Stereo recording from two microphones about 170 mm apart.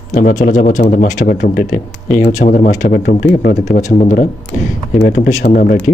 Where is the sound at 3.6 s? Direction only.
45° left (ahead or behind).